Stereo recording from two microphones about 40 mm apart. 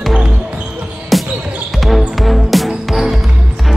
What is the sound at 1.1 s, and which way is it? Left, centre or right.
Basketball bounce, centre.